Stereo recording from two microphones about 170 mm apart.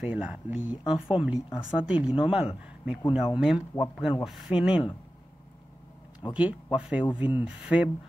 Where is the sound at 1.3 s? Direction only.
25° left (ahead or behind).